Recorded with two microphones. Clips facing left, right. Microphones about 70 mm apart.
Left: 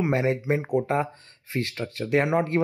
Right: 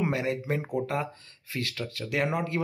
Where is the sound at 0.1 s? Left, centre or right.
Left.